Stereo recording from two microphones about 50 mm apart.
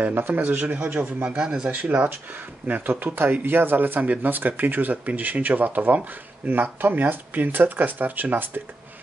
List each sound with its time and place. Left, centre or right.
0.0 s speech: right; by 1.7 s centre
1.7 s speech: right